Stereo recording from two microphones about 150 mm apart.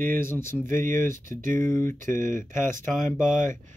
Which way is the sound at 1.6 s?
15° left (ahead or behind).